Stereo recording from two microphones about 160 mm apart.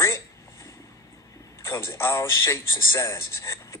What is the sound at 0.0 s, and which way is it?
Speech, 15° left (ahead or behind).